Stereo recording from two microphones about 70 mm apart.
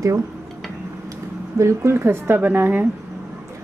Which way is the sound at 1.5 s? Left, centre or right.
Right.